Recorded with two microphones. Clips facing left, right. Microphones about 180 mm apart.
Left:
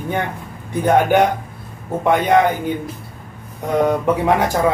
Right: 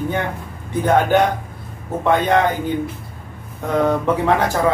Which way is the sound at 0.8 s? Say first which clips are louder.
Left 1 dB; 15° left (ahead or behind).